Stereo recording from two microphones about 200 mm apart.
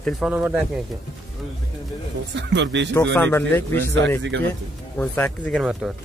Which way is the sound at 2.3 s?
65° right (ahead or behind).